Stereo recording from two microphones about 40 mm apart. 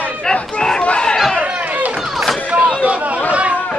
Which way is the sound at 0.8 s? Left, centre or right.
Left.